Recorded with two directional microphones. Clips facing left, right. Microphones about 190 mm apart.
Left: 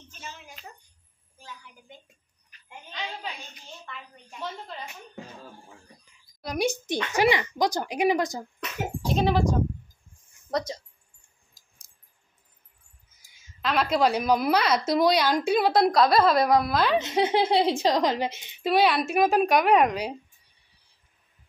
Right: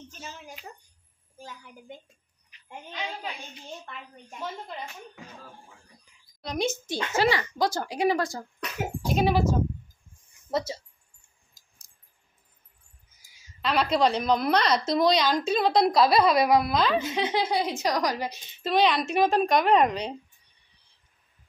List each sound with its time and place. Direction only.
0.1 s a sound: 40° right (ahead or behind)
1.4 s a woman's voice: 50° right (ahead or behind)
4.4 s speech: 10° right (ahead or behind)
6.4 s a woman's voice: 10° left (ahead or behind)
9.0 s speech: 10° right (ahead or behind)
13.6 s a woman's voice: centre (ahead or behind)
17.1 s a woman's voice: 30° left (ahead or behind); by 20.2 s 5° left (ahead or behind)